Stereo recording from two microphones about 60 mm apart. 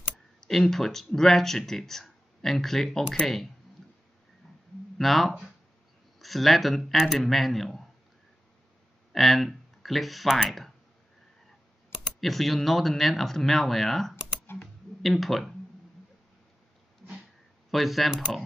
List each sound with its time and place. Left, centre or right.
0.4 s speech: centre
4.9 s speech: centre
9.1 s speech: centre
12.2 s speech: centre
14.4 s typing: left
15.0 s speech: centre
17.6 s speech: centre